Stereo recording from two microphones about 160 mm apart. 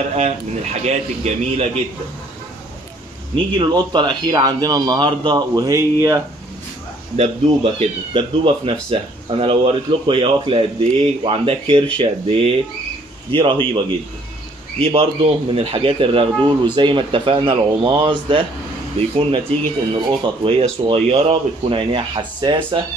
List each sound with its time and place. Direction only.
0.8 s speech: 45° right (ahead or behind)
3.5 s a man's voice: 30° right (ahead or behind)
7.2 s speech: 35° right (ahead or behind)